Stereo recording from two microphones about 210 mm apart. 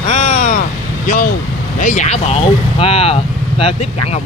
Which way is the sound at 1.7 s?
35° left (ahead or behind).